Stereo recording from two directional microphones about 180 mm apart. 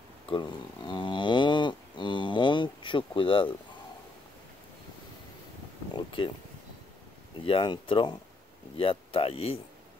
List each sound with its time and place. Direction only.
0.3 s livestock: 25° left (ahead or behind)
5.9 s a sound: 25° left (ahead or behind)
7.4 s speech: 30° left (ahead or behind)